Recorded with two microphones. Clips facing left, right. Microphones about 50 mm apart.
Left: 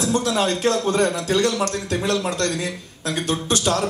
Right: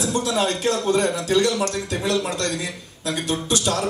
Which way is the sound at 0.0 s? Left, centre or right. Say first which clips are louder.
Left 1 dB; left.